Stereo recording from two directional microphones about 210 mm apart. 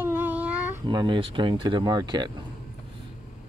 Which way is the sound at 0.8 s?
20° right (ahead or behind).